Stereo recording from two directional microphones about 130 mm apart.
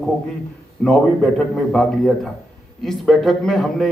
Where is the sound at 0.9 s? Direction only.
5° left (ahead or behind).